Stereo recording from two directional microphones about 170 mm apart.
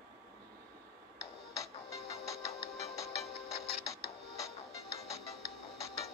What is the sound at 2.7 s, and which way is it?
Music, 40° left (ahead or behind).